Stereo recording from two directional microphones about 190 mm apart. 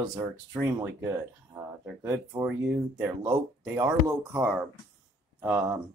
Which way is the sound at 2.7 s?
Centre (ahead or behind).